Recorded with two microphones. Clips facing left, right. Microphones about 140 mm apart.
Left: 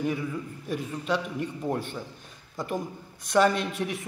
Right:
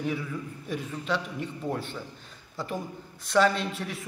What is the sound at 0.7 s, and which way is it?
Speech, 10° left (ahead or behind).